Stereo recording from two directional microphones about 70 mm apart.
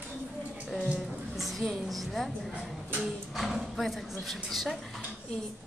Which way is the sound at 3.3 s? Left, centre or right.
Centre.